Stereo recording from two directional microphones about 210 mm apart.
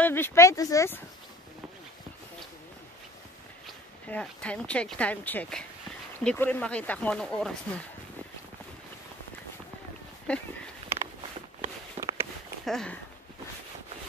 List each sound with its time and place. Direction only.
0.0 s speech: 10° left (ahead or behind)
3.6 s speech: 5° left (ahead or behind)
10.3 s speech: 5° left (ahead or behind)
11.6 s a sound: 20° right (ahead or behind)
12.6 s speech: 5° left (ahead or behind)